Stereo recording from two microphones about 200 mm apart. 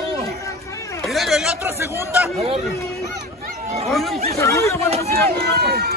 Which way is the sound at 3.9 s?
Centre (ahead or behind).